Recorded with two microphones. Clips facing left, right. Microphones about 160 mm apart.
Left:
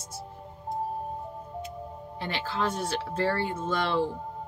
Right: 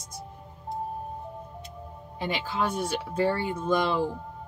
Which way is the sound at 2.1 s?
15° right (ahead or behind).